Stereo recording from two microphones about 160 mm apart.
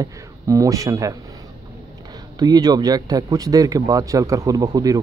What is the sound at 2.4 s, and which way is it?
Speech, 25° right (ahead or behind).